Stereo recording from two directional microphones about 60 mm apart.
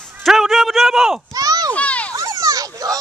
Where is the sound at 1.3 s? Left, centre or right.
Right.